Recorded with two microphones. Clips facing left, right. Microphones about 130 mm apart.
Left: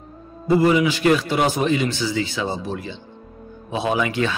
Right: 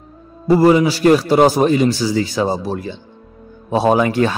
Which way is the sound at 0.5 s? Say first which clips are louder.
Right 5 dB; 40° right (ahead or behind).